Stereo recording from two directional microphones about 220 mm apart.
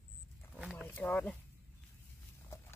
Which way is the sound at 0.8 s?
10° left (ahead or behind).